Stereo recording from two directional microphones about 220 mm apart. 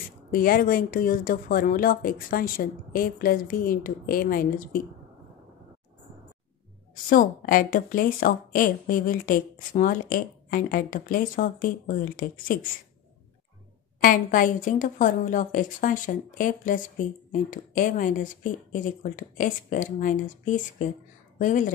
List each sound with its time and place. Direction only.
0.3 s a woman's voice: 40° left (ahead or behind)
7.1 s a woman's voice: 40° left (ahead or behind)
14.0 s a woman's voice: 40° left (ahead or behind)